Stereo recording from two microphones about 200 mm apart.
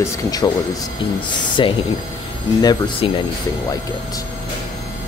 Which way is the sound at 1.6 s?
25° left (ahead or behind).